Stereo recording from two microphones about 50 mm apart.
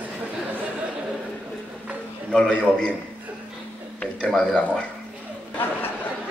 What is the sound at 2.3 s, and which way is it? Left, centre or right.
Speech, centre.